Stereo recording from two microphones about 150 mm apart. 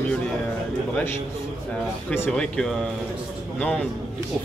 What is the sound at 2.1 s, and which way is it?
A man's voice, 5° left (ahead or behind).